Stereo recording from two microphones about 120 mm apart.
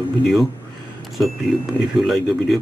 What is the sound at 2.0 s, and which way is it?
Speech, centre (ahead or behind).